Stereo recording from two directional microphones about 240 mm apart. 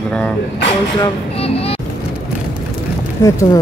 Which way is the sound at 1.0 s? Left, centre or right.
Left.